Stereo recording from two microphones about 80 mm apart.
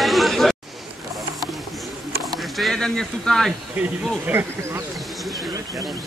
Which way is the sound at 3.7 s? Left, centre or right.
Right.